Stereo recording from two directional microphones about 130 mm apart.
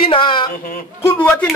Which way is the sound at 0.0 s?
40° left (ahead or behind).